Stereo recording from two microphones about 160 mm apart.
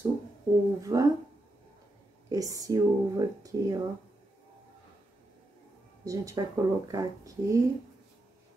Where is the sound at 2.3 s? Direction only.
20° right (ahead or behind).